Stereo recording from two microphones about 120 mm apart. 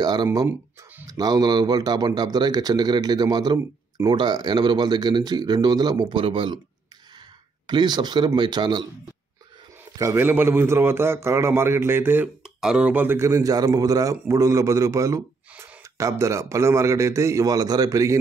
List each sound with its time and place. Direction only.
0.0 s speech: 35° right (ahead or behind)
7.6 s speech: 35° right (ahead or behind)
9.9 s a man's voice: 25° right (ahead or behind)
12.4 s a man's voice: 5° right (ahead or behind); by 18.1 s 30° right (ahead or behind)